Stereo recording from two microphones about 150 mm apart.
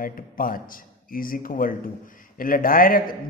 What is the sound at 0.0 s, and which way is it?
A man's voice, 70° left (ahead or behind).